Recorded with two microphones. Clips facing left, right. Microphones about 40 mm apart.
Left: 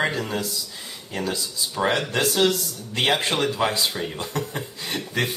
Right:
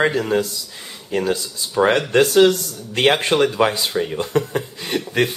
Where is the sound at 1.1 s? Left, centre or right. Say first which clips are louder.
Right 7 dB; right.